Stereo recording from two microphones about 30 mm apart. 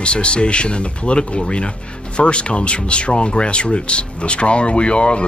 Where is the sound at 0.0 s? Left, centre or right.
Left.